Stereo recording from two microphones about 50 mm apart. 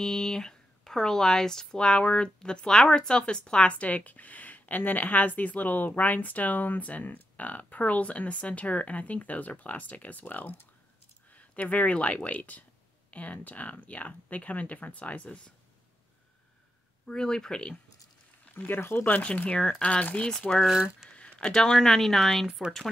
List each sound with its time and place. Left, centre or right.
0.0 s speech: centre; by 15.4 s left
17.0 s speech: centre
18.4 s a sound: left
18.8 s speech: left
19.2 s speech: left
21.2 s a sound: centre
21.7 s speech: centre